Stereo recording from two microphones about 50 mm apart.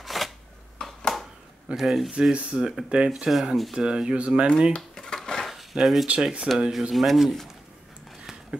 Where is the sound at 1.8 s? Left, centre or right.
Centre.